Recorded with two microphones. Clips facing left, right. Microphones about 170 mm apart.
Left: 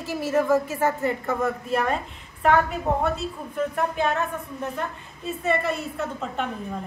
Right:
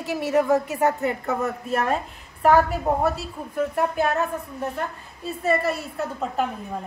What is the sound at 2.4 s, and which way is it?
Speech, 35° right (ahead or behind).